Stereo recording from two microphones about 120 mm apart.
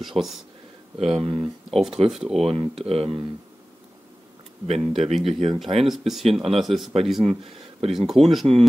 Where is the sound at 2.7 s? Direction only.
55° right (ahead or behind).